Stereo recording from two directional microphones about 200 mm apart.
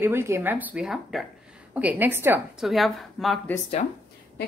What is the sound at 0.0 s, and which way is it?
Speech, 10° right (ahead or behind).